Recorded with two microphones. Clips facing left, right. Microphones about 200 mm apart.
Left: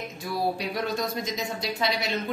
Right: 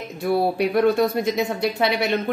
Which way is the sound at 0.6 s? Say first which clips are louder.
Right 11 dB; 60° right (ahead or behind).